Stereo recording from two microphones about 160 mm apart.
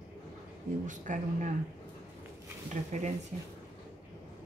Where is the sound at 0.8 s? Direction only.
50° right (ahead or behind).